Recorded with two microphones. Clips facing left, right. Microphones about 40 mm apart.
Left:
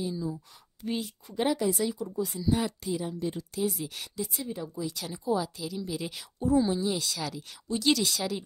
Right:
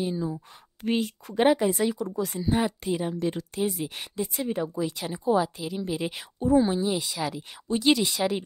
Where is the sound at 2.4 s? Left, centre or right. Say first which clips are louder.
Right 3 dB; right.